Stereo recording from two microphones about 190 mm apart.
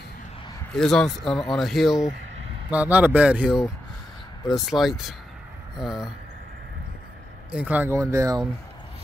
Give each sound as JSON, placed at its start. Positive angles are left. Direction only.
{"t": 0.7, "sound": "speech", "side_deg": 5}
{"t": 4.6, "sound": "speech", "side_deg": 0}
{"t": 7.5, "sound": "speech", "side_deg": -10}